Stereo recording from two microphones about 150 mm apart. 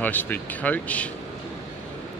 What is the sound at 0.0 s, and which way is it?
Speech, 10° left (ahead or behind).